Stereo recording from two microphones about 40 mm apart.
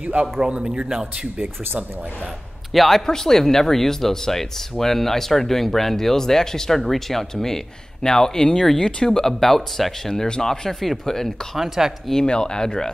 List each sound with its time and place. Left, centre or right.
0.0 s a man's voice: right
0.4 s a man's voice: right
2.7 s a man's voice: centre
3.1 s speech: centre
10.2 s speech: centre
11.5 s speech: centre
12.1 s speech: centre